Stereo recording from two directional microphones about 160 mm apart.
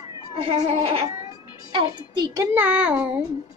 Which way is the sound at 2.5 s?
10° right (ahead or behind).